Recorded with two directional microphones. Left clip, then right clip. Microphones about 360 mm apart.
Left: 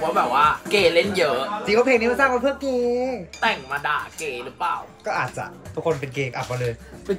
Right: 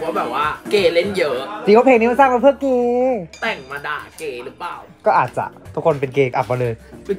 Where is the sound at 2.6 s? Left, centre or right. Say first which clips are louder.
Right 5 dB; right.